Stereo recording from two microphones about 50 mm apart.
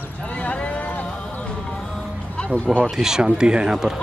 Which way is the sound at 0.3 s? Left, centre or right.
Left.